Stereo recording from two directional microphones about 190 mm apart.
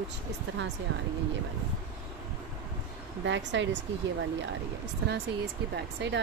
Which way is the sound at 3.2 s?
75° right (ahead or behind).